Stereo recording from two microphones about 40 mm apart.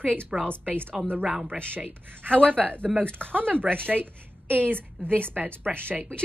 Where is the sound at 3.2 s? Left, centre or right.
Right.